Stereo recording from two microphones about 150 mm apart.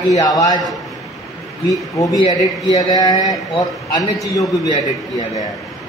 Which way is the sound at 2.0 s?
20° left (ahead or behind).